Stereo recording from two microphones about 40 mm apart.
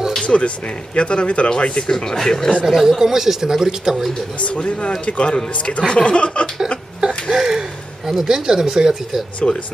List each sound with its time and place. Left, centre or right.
0.2 s a sound: left
0.9 s speech: left
2.6 s speech: centre
4.4 s speech: left
7.3 s a sound: centre
8.1 s speech: centre
9.4 s speech: centre